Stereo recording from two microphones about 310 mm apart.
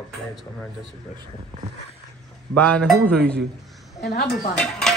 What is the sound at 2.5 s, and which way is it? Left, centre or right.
Speech, centre.